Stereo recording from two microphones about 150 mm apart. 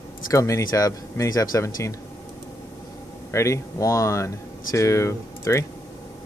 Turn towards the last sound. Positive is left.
turn(degrees=20)  # may be behind; listen again after turning